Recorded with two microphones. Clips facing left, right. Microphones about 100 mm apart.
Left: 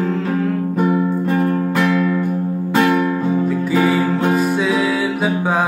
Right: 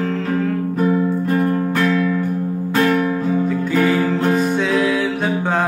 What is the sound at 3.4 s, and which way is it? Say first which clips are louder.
Music: left 1 dB; centre (ahead or behind).